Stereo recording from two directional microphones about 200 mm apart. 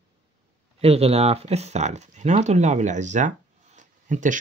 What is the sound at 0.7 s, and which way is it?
Speech, 30° right (ahead or behind).